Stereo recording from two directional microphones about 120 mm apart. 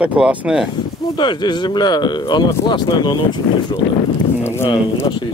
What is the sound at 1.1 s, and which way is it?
Speech, 40° left (ahead or behind).